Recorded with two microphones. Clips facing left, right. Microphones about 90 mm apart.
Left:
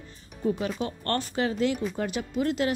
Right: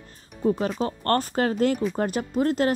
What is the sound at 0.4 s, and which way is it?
Speech, 40° right (ahead or behind).